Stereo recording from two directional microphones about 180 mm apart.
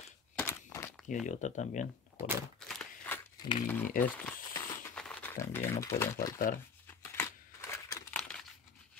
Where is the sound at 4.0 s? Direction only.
50° left (ahead or behind).